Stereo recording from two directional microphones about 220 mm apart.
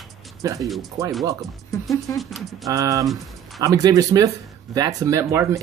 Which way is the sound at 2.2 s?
Centre (ahead or behind).